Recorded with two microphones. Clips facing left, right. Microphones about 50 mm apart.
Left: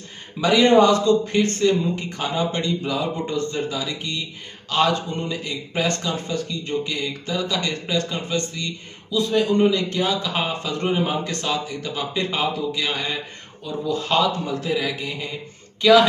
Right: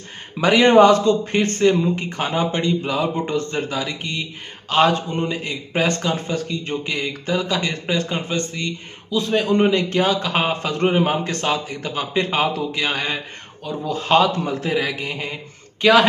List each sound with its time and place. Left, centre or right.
0.4 s a man's voice: right